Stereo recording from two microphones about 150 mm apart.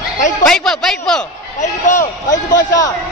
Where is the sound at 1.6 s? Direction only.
55° left (ahead or behind).